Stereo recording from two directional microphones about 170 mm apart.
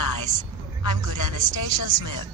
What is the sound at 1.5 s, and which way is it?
Speech, 25° right (ahead or behind).